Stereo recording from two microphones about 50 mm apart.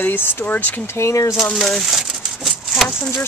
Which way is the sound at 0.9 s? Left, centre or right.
Left.